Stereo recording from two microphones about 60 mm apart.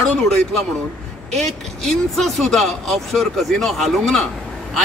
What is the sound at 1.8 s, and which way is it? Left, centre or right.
A man's voice, centre.